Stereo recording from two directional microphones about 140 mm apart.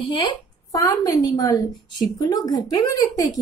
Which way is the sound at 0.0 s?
35° left (ahead or behind).